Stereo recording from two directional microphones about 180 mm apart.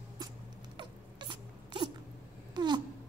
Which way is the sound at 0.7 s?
25° right (ahead or behind).